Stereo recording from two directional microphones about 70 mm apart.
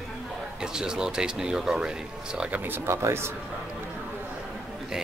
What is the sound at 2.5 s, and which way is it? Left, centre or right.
Speech, right.